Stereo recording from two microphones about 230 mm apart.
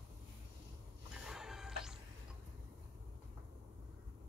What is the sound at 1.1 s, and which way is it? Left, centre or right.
Music, centre.